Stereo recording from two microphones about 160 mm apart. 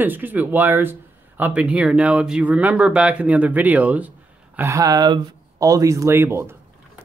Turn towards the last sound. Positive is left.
turn(degrees=-15)  # may be behind; listen again after turning